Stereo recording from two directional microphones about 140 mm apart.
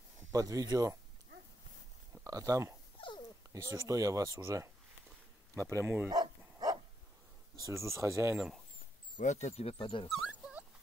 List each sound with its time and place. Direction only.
0.3 s speech: 25° right (ahead or behind)
2.2 s speech: 25° right (ahead or behind)
5.7 s speech: 20° right (ahead or behind)
6.0 s dog: 30° right (ahead or behind)
7.5 s speech: 20° right (ahead or behind)
9.2 s speech: 55° left (ahead or behind); by 10.0 s 40° left (ahead or behind)
10.2 s dog: 5° right (ahead or behind)